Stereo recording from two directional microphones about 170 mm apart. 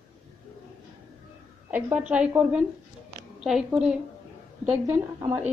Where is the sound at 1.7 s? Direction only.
10° right (ahead or behind).